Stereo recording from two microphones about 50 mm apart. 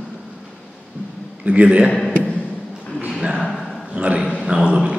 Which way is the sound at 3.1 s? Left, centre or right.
Centre.